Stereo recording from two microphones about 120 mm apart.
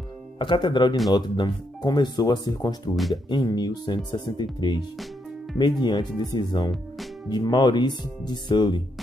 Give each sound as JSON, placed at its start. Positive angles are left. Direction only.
{"t": 0.4, "sound": "speech", "side_deg": 45}